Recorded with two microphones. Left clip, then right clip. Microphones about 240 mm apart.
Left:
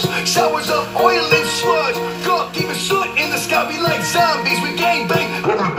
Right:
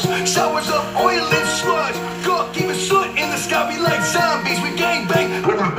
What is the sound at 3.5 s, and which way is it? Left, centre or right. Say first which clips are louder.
Music: left 1 dB; right.